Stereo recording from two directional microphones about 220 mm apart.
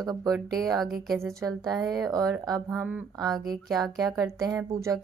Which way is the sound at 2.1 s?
15° right (ahead or behind).